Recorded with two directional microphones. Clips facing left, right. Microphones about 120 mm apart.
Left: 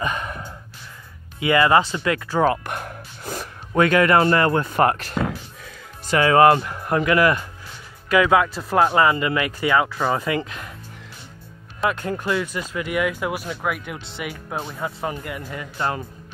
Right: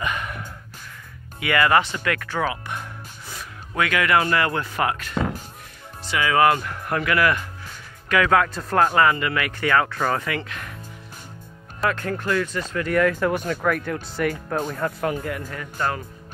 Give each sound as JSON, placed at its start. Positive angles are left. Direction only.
{"t": 0.0, "sound": "a sound", "side_deg": 30}
{"t": 1.4, "sound": "speech", "side_deg": 25}
{"t": 2.4, "sound": "a sound", "side_deg": 50}
{"t": 3.7, "sound": "speech", "side_deg": 35}
{"t": 6.0, "sound": "speech", "side_deg": 40}
{"t": 6.6, "sound": "speech", "side_deg": 15}
{"t": 11.8, "sound": "speech", "side_deg": 20}